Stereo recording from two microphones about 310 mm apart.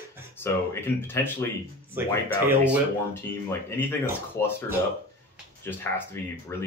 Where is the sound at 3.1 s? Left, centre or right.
Centre.